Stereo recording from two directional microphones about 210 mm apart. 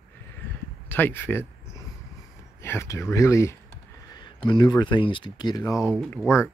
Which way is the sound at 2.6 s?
10° left (ahead or behind).